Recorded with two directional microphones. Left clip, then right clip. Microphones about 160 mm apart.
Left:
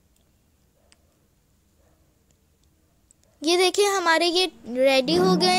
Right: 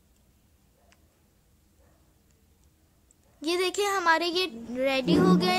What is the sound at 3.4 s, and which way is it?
Child singing, 30° left (ahead or behind).